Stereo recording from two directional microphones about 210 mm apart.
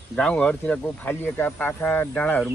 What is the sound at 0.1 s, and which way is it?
Speech, 5° left (ahead or behind).